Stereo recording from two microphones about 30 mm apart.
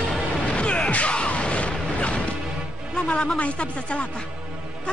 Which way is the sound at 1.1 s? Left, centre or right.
Left.